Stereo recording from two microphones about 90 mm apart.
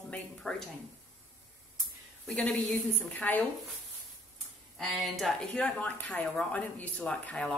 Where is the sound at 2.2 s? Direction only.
15° left (ahead or behind).